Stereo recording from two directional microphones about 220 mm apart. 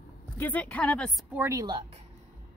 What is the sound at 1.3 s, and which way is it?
Speech, 10° right (ahead or behind).